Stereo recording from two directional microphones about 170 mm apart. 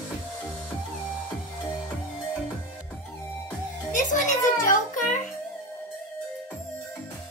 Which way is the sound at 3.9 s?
45° left (ahead or behind).